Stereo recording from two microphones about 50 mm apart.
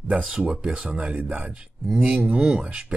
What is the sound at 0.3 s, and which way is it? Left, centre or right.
Speech, centre.